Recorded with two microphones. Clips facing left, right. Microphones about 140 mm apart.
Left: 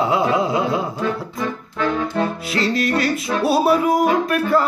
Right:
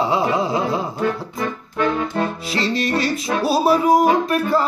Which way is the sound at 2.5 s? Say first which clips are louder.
Left 1 dB; 30° right (ahead or behind).